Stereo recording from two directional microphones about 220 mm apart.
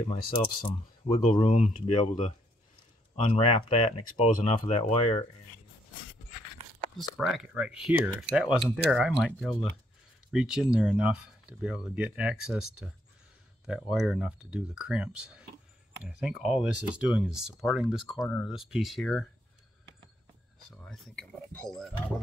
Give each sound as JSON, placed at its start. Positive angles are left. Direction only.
{"t": 0.3, "sound": "speech", "side_deg": 25}
{"t": 7.0, "sound": "speech", "side_deg": 0}
{"t": 13.7, "sound": "speech", "side_deg": -5}
{"t": 20.7, "sound": "speech", "side_deg": 5}